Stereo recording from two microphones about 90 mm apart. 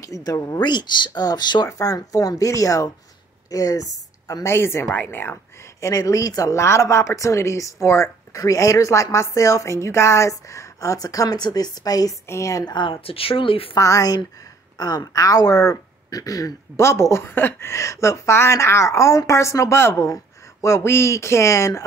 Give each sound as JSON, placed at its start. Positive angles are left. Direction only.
{"t": 0.0, "sound": "speech", "side_deg": 40}
{"t": 0.7, "sound": "speech", "side_deg": 55}
{"t": 4.5, "sound": "speech", "side_deg": 30}
{"t": 5.8, "sound": "speech", "side_deg": 40}
{"t": 12.7, "sound": "speech", "side_deg": 60}
{"t": 13.7, "sound": "speech", "side_deg": 40}